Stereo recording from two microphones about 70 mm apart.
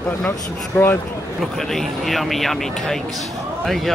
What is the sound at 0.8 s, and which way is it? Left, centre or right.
Speech, left.